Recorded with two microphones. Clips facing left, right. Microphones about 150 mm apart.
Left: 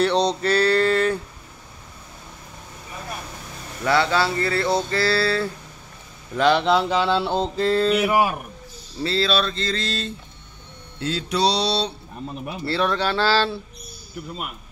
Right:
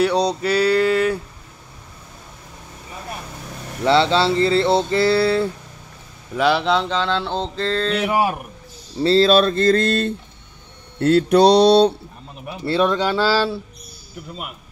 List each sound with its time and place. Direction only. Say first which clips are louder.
0.0 s a sound: right 1 dB; 10° right (ahead or behind)
3.8 s a sound: right 4 dB; 25° right (ahead or behind)
6.3 s mantra: even; 5° right (ahead or behind)
9.0 s speech: right 8 dB; 40° right (ahead or behind); by 10.1 s 55° right (ahead or behind)
11.0 s mantra: right 10 dB; 60° right (ahead or behind)
12.6 s speech: right 4 dB; 20° right (ahead or behind)